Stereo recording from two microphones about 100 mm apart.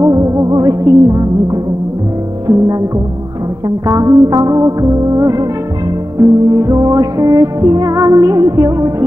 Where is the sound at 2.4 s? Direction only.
35° right (ahead or behind).